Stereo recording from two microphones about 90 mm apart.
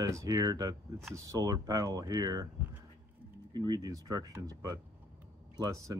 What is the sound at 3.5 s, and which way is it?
Speech, 50° right (ahead or behind).